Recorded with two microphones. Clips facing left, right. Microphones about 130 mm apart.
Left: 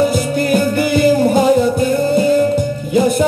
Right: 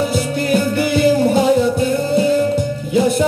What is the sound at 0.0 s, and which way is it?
Music, 50° left (ahead or behind).